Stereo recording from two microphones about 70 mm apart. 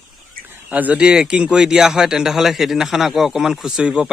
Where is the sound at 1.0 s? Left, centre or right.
Centre.